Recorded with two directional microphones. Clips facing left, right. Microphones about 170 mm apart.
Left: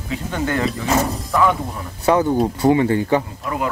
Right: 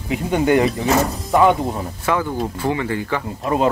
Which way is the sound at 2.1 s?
30° left (ahead or behind).